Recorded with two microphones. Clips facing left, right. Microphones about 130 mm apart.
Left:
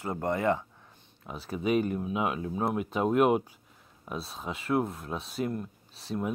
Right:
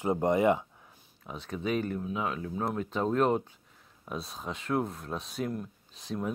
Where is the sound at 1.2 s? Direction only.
5° left (ahead or behind).